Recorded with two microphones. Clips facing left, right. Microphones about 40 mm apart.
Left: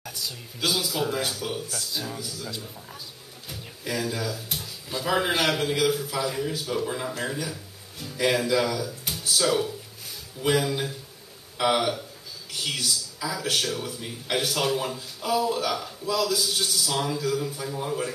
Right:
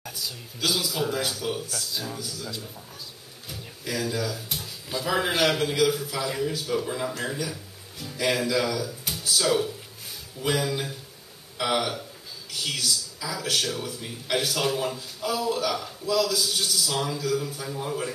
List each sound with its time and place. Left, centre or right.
0.0 s a sound: centre
0.6 s a man's voice: centre
16.6 s a man's voice: centre